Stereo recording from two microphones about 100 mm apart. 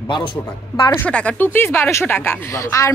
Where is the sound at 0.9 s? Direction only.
15° left (ahead or behind).